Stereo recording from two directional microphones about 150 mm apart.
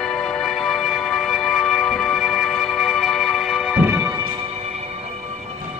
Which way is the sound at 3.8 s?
15° right (ahead or behind).